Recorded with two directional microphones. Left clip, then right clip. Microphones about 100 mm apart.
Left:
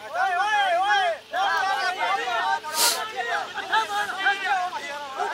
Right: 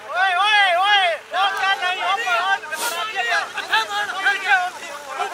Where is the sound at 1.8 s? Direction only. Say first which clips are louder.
Right 4 dB; 15° left (ahead or behind).